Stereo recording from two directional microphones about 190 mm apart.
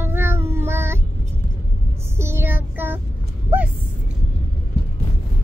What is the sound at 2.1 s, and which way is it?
Child singing, 15° right (ahead or behind).